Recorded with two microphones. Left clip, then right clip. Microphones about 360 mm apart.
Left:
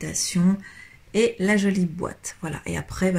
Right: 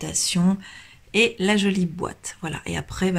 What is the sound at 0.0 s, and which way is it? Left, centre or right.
Speech, centre.